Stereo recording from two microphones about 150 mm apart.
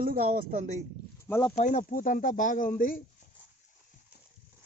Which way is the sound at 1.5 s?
55° left (ahead or behind).